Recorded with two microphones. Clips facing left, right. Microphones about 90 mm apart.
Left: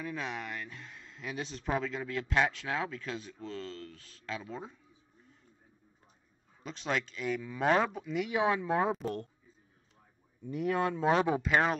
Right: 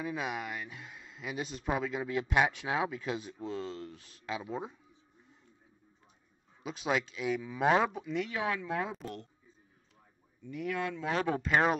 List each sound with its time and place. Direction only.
0.0 s speech: 10° right (ahead or behind)
6.6 s speech: 5° right (ahead or behind)
8.3 s speech: 20° left (ahead or behind); by 9.3 s 40° left (ahead or behind)
10.4 s speech: 40° left (ahead or behind)
11.1 s speech: 10° left (ahead or behind)